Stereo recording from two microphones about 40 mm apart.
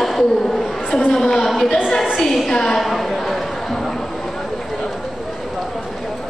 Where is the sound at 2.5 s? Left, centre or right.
Centre.